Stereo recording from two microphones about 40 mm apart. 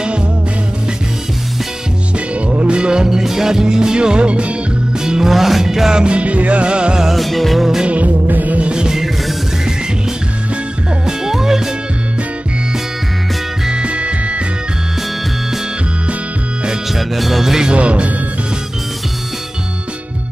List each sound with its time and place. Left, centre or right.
2.1 s music: right
5.0 s music: centre
7.1 s music: centre
7.8 s speech: right
8.1 s music: right
8.6 s music: centre
11.1 s music: centre
13.7 s music: right
16.9 s music: centre
17.7 s speech: right